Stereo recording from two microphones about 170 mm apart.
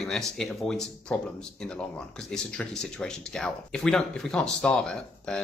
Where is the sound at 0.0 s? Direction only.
Centre (ahead or behind).